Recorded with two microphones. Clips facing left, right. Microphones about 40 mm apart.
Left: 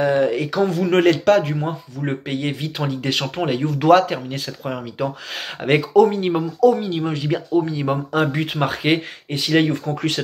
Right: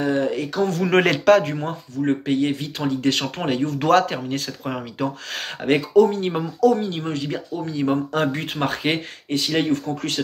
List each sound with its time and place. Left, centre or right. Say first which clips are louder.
0.0 s speech: left 4 dB; centre
0.8 s speech: even; centre
5.6 s speech: left 2 dB; centre